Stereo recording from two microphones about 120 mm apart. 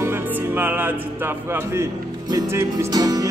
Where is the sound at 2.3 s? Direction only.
30° right (ahead or behind).